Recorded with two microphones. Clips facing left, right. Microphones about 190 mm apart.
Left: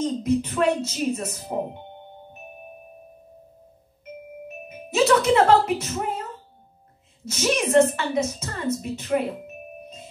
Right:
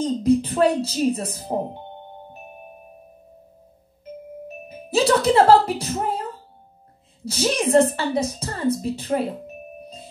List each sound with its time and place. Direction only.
0.0 s a woman's voice: 35° right (ahead or behind)
4.6 s doorbell: 35° right (ahead or behind)
7.2 s a woman's voice: 35° right (ahead or behind)